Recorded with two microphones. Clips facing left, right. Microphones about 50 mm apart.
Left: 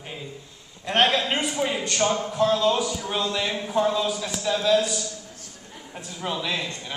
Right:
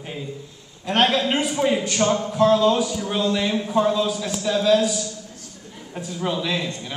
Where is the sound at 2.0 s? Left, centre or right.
Centre.